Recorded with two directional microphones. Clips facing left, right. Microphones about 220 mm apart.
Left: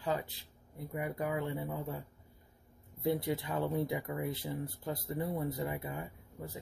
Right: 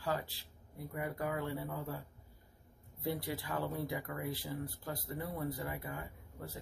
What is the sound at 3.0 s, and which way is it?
Speech, 25° left (ahead or behind).